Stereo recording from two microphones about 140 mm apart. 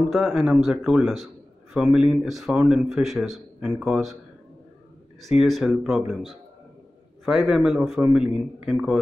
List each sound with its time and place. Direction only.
0.1 s a man's voice: centre (ahead or behind)
5.4 s a man's voice: centre (ahead or behind)